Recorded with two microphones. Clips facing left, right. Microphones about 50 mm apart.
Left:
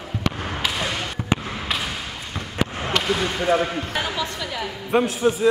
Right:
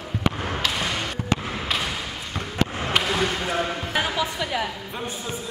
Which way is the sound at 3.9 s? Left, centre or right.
Centre.